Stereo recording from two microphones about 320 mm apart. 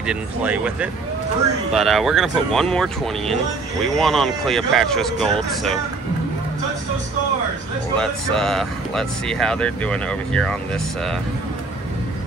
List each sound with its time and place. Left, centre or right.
0.0 s speech: centre
8.0 s speech: centre